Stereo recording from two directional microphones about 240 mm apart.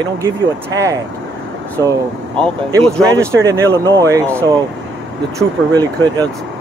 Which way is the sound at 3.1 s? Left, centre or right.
Centre.